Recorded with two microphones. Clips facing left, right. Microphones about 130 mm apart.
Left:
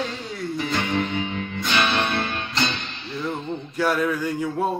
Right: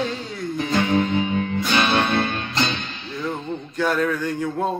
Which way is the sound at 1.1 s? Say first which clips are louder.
Right 6 dB; 40° right (ahead or behind).